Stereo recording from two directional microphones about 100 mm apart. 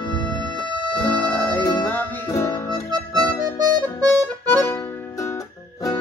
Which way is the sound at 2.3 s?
30° left (ahead or behind).